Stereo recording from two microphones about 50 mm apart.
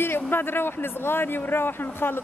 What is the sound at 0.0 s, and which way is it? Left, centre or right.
A woman's voice, left.